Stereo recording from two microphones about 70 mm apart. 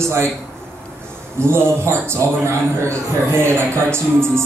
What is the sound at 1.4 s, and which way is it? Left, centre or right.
A man's voice, right.